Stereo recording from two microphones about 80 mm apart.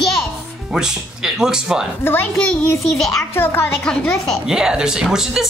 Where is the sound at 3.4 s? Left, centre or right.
Left.